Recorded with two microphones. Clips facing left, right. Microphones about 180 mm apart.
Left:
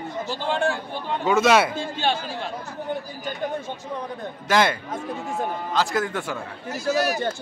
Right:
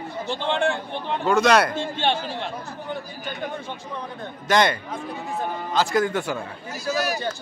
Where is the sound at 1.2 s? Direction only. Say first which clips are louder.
Even; 5° left (ahead or behind).